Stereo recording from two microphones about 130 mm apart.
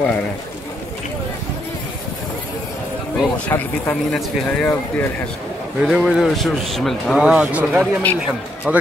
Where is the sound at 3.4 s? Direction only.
15° left (ahead or behind).